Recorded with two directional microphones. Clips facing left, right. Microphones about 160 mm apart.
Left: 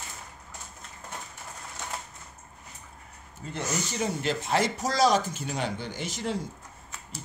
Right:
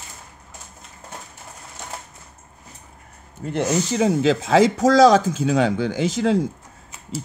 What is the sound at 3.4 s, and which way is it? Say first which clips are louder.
Speech: right 11 dB; 80° right.